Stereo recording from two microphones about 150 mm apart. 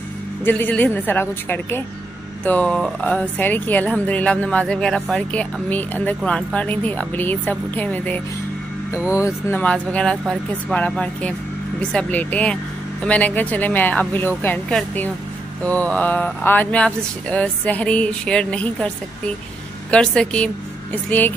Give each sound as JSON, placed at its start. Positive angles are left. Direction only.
{"t": 0.5, "sound": "speech", "side_deg": 10}
{"t": 8.9, "sound": "speech", "side_deg": -10}
{"t": 9.2, "sound": "speech", "side_deg": 10}
{"t": 15.6, "sound": "a woman's voice", "side_deg": 10}